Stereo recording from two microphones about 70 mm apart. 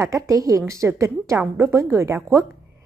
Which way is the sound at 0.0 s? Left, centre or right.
Right.